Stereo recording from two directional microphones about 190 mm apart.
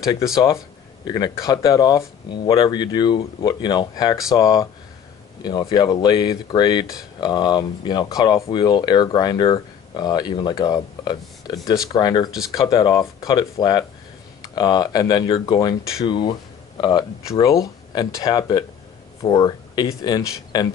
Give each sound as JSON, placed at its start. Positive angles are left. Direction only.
{"t": 0.3, "sound": "speech", "side_deg": 25}